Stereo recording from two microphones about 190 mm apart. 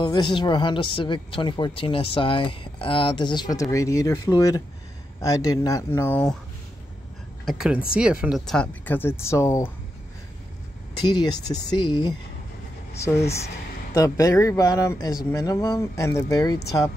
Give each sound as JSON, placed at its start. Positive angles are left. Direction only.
{"t": 0.0, "sound": "a woman's voice", "side_deg": 20}
{"t": 7.4, "sound": "speech", "side_deg": -5}
{"t": 11.0, "sound": "a woman's voice", "side_deg": 20}